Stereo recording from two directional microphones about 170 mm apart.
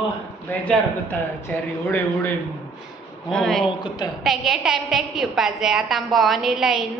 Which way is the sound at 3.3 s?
5° left (ahead or behind).